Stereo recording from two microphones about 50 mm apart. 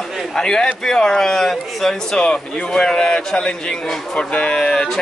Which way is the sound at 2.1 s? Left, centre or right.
Centre.